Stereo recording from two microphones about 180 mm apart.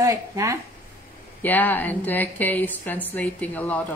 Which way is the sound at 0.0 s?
15° right (ahead or behind).